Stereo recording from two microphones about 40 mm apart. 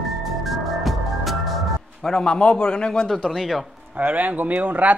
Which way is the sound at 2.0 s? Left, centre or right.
Centre.